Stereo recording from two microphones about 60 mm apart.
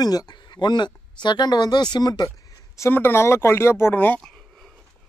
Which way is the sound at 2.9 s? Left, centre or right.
Left.